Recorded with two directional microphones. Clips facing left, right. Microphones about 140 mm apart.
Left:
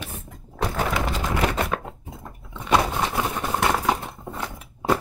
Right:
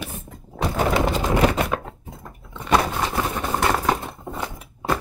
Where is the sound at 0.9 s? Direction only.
25° right (ahead or behind).